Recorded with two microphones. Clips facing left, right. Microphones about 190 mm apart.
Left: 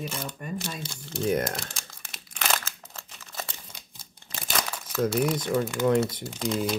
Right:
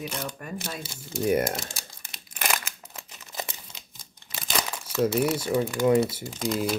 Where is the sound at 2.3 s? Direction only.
10° right (ahead or behind).